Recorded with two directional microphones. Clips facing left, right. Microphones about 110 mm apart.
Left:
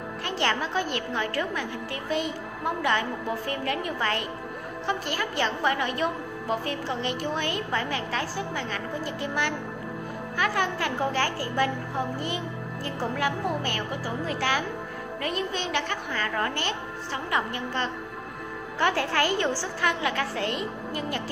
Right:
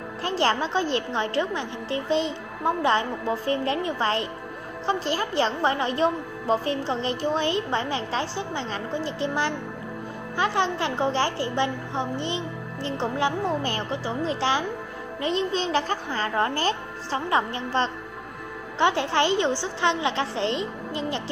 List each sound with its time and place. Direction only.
0.2 s a woman's voice: 30° right (ahead or behind)